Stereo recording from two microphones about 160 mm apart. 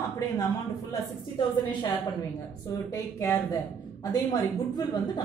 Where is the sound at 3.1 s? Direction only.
15° left (ahead or behind).